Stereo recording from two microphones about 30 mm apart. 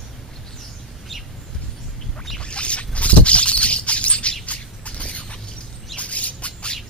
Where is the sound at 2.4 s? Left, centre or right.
Left.